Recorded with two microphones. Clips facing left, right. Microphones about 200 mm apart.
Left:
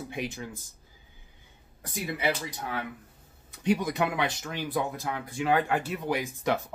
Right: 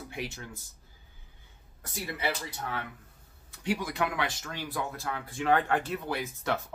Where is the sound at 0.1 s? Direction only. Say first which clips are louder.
Left 2 dB; 20° left (ahead or behind).